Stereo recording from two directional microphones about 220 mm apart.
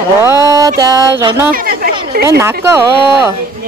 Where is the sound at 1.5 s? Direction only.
40° right (ahead or behind).